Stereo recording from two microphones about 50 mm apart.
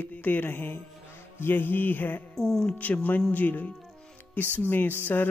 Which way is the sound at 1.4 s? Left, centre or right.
Left.